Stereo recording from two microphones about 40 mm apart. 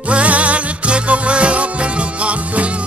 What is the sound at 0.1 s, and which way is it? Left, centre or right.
Music, right.